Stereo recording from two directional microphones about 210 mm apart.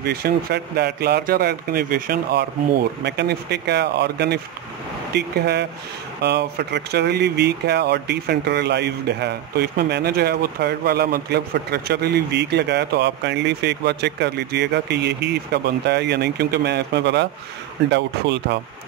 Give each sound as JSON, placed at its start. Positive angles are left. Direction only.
{"t": 0.0, "sound": "speech", "side_deg": -45}